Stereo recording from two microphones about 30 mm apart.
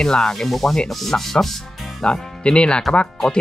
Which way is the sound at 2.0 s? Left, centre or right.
Left.